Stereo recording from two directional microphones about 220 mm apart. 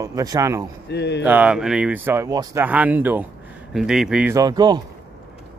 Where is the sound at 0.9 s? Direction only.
50° left (ahead or behind).